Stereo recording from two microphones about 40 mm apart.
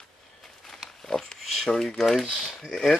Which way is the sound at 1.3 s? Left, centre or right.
Centre.